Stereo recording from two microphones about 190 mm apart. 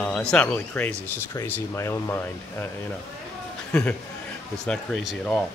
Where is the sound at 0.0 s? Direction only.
5° left (ahead or behind).